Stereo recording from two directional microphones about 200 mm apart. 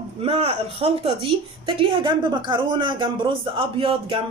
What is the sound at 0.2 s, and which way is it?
A woman's voice, 30° right (ahead or behind).